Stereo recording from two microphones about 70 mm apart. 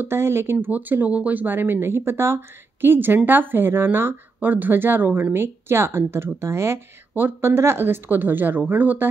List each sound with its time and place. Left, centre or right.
0.0 s speech: right
0.7 s speech: right